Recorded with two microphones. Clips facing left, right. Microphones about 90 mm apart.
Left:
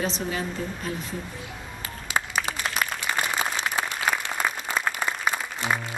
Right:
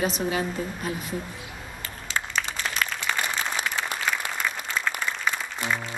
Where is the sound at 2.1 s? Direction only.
10° left (ahead or behind).